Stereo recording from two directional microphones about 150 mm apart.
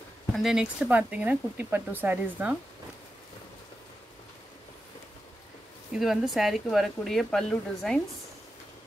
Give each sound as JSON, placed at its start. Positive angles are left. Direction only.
{"t": 0.4, "sound": "speech", "side_deg": -5}
{"t": 5.9, "sound": "speech", "side_deg": 0}